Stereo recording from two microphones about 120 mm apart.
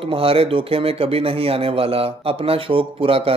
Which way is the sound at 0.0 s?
50° right (ahead or behind).